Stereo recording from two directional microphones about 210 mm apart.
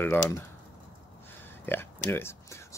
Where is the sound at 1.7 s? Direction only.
10° left (ahead or behind).